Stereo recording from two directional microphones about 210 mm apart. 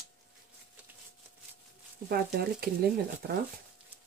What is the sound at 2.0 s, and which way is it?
Speech, 50° right (ahead or behind).